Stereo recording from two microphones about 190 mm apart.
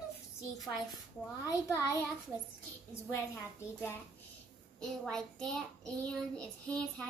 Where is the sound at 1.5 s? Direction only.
15° left (ahead or behind).